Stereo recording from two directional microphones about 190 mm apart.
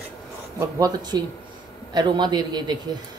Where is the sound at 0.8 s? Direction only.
20° right (ahead or behind).